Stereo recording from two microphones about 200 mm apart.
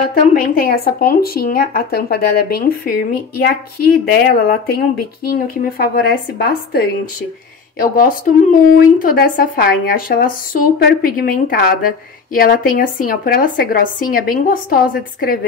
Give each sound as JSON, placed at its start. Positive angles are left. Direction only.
{"t": 0.3, "sound": "speech", "side_deg": 50}
{"t": 4.1, "sound": "speech", "side_deg": 50}
{"t": 7.8, "sound": "speech", "side_deg": 45}